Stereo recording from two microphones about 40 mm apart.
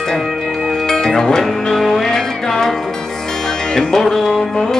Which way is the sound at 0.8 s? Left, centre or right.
Centre.